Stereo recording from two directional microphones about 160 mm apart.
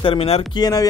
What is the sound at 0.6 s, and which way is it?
Speech, 20° left (ahead or behind).